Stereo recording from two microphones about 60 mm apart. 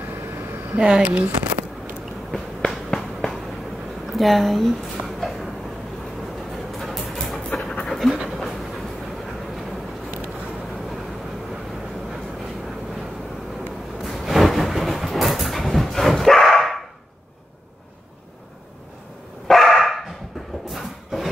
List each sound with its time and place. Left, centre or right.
0.7 s speech: centre
1.1 s speech: right
2.7 s a sound: centre
6.5 s dog: centre
7.8 s pant: centre
8.3 s train: centre
14.0 s a sound: centre
19.4 s dog: centre
20.7 s a sound: centre